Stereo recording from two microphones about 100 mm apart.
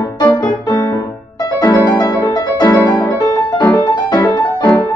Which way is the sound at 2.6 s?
15° left (ahead or behind).